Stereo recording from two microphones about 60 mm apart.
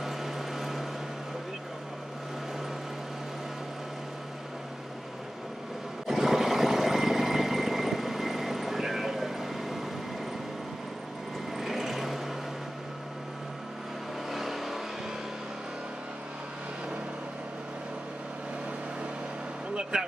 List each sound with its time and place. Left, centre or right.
0.0 s vehicle: centre
6.0 s vehicle: centre
11.5 s a sound: centre
14.3 s vehicle: centre
19.7 s vehicle: centre